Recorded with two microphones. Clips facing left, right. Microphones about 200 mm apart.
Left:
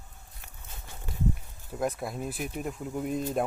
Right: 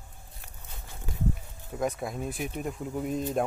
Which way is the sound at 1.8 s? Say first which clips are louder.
Even; centre (ahead or behind).